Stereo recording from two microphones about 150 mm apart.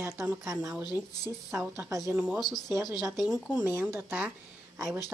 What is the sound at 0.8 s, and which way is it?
Speech, 25° left (ahead or behind).